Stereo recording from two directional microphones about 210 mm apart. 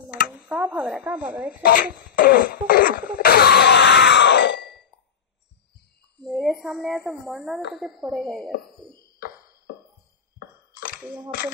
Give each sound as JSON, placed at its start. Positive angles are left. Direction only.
{"t": 0.5, "sound": "speech", "side_deg": -5}
{"t": 1.6, "sound": "fart", "side_deg": 45}
{"t": 6.2, "sound": "speech", "side_deg": 0}
{"t": 11.0, "sound": "a child's voice", "side_deg": -5}